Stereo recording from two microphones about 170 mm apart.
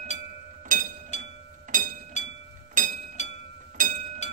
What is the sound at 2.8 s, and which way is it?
Music, 50° right (ahead or behind).